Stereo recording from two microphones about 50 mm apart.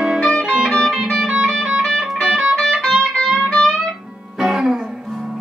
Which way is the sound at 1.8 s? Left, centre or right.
Centre.